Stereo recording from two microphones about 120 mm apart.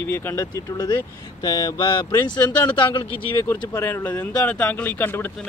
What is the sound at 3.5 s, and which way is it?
Speech, 20° left (ahead or behind).